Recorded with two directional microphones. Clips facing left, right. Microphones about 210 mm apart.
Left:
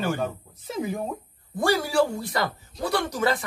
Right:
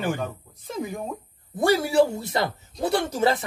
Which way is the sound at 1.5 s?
20° right (ahead or behind).